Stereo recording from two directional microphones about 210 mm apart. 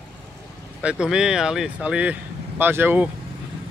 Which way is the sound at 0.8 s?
5° right (ahead or behind).